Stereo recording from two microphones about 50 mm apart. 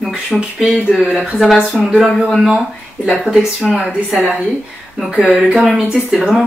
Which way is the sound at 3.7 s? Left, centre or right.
Centre.